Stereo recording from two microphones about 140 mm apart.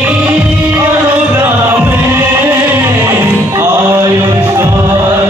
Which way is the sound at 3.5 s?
20° right (ahead or behind).